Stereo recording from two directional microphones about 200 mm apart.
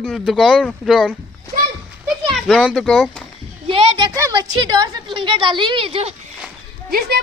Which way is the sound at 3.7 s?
20° right (ahead or behind).